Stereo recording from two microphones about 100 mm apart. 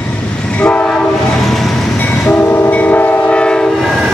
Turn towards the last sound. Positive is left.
turn(degrees=0)  # may be behind; listen again after turning